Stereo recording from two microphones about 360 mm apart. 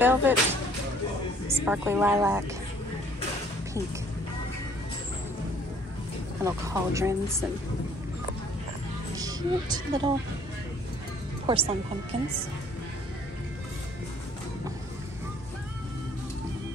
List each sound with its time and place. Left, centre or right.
0.0 s speech: centre
6.4 s speech: centre
9.1 s a woman's voice: centre
11.4 s speech: centre